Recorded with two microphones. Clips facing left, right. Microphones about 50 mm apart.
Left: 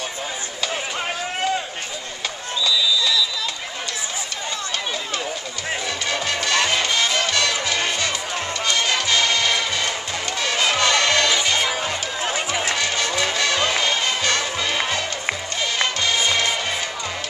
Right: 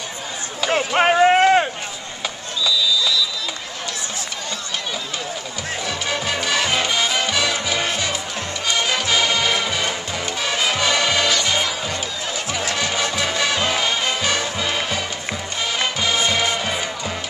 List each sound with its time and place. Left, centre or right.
0.7 s chop: right
6.0 s music: centre
11.2 s music: centre
12.7 s music: centre